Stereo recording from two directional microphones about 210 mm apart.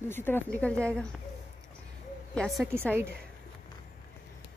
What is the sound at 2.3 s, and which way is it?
Speech, centre (ahead or behind).